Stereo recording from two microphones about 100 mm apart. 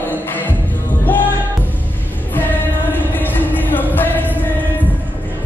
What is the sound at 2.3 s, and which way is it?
Music, 20° left (ahead or behind).